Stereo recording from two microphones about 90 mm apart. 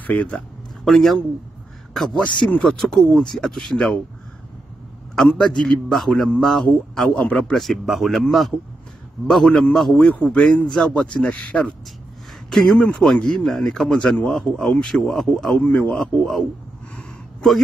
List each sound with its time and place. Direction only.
0.0 s a man's voice: 15° left (ahead or behind)
0.8 s a man's voice: 5° left (ahead or behind)
5.1 s a man's voice: 5° left (ahead or behind)
9.9 s a man's voice: 15° left (ahead or behind)
15.6 s a man's voice: 15° left (ahead or behind)
16.9 s a sound: 5° left (ahead or behind)